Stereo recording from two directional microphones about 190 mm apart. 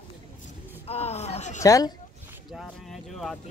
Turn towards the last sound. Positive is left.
turn(degrees=0)  # may be behind; listen again after turning